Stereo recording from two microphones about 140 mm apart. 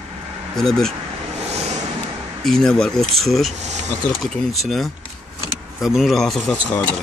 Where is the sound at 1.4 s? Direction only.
50° right (ahead or behind).